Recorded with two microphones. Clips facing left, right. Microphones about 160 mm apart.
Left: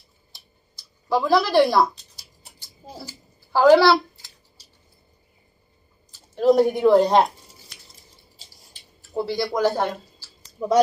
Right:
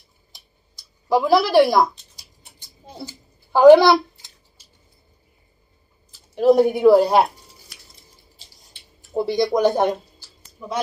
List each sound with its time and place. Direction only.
1.0 s speech: 10° right (ahead or behind)
3.0 s a sound: 20° right (ahead or behind)
6.3 s speech: 5° right (ahead or behind)
9.1 s speech: 20° right (ahead or behind)
10.6 s speech: 35° left (ahead or behind)